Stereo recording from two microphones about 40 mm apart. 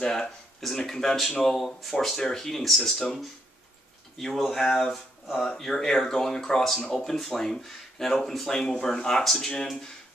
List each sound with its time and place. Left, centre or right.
0.0 s speech: centre
4.2 s speech: centre